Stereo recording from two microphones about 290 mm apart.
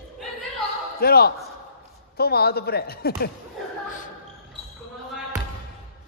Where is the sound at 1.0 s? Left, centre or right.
Left.